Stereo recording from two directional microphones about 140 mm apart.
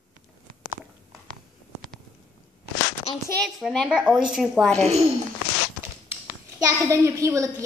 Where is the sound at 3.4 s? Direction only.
Centre (ahead or behind).